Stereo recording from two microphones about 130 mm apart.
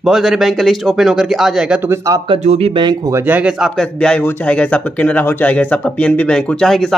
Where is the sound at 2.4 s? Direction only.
55° right (ahead or behind).